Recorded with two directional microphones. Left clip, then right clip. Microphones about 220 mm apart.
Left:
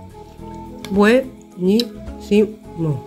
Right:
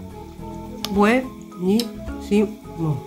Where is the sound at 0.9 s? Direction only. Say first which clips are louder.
Left 4 dB; 15° left (ahead or behind).